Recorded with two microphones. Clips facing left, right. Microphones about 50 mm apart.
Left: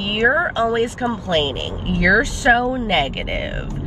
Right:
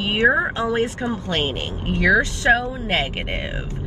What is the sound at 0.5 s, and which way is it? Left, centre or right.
Speech, left.